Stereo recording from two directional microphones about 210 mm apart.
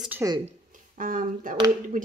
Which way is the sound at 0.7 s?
40° right (ahead or behind).